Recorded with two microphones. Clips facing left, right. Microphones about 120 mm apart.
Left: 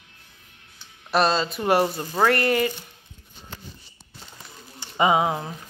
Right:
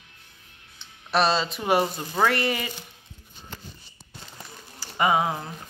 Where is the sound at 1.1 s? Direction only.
Centre (ahead or behind).